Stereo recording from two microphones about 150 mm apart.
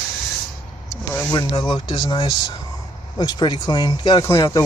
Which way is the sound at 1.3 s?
25° left (ahead or behind).